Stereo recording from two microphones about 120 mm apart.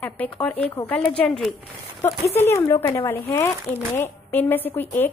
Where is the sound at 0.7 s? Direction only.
20° left (ahead or behind).